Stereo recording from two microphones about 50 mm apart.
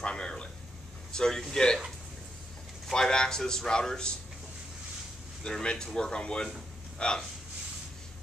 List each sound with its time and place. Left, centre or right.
0.0 s a sound: centre
1.1 s a man's voice: centre
2.9 s a man's voice: centre
5.4 s a man's voice: centre